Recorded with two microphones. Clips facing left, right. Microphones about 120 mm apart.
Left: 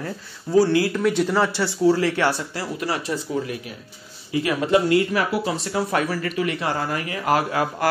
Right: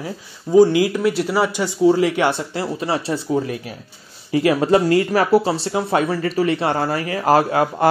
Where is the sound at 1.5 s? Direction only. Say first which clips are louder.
Right 3 dB; 15° right (ahead or behind).